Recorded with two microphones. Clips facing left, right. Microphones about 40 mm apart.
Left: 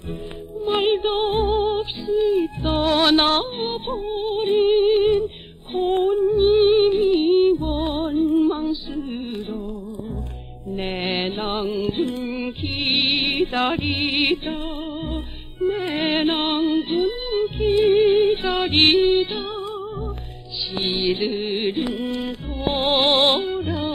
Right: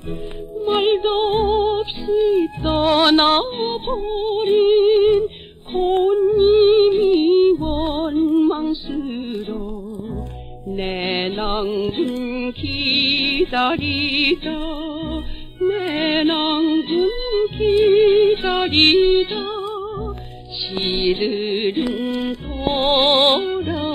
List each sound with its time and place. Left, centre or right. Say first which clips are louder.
0.7 s music: right 3 dB; centre
10.9 s mantra: right 2 dB; centre
11.5 s music: right 2 dB; centre
19.4 s music: right 3 dB; centre